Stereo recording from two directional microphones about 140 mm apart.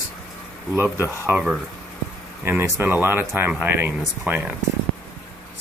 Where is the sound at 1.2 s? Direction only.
10° right (ahead or behind).